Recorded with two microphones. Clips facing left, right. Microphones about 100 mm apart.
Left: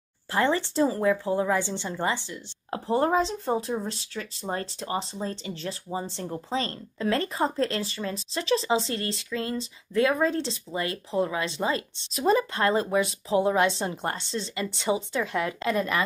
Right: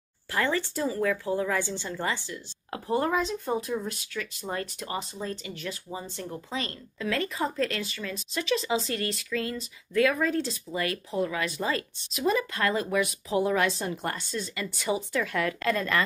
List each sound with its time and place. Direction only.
0.3 s a woman's voice: 25° left (ahead or behind)
12.1 s a woman's voice: 35° left (ahead or behind); by 16.0 s 20° left (ahead or behind)